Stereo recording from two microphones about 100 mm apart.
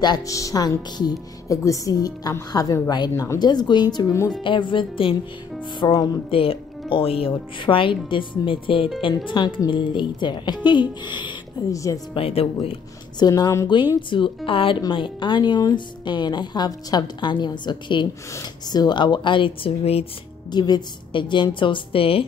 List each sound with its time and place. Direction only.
0.0 s speech: 40° left (ahead or behind)
4.4 s speech: 55° left (ahead or behind)
5.8 s speech: 45° left (ahead or behind)
6.3 s speech: 65° left (ahead or behind); by 11.3 s 50° left (ahead or behind)
11.7 s speech: 30° left (ahead or behind)
12.1 s speech: 70° left (ahead or behind)
13.3 s speech: 30° left (ahead or behind)
14.1 s speech: 60° left (ahead or behind); by 20.1 s 80° left
20.5 s speech: 45° left (ahead or behind); by 22.2 s 65° left (ahead or behind)